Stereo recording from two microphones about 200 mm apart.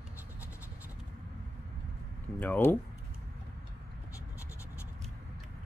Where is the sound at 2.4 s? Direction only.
10° left (ahead or behind).